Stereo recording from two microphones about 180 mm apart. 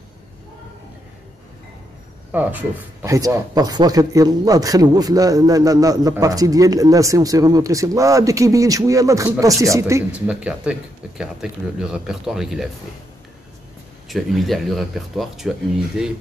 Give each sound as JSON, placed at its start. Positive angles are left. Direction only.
{"t": 2.3, "sound": "speech", "side_deg": -10}
{"t": 14.0, "sound": "speech", "side_deg": 0}